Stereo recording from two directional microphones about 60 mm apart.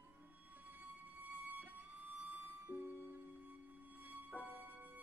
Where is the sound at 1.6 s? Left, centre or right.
Right.